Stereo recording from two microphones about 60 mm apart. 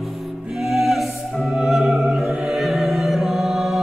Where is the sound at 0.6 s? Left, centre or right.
Centre.